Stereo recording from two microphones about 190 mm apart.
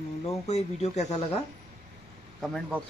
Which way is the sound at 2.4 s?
Centre (ahead or behind).